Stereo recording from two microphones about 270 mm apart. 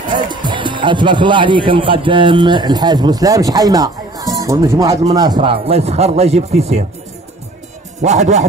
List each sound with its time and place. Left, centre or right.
0.1 s speech: centre
8.0 s speech: right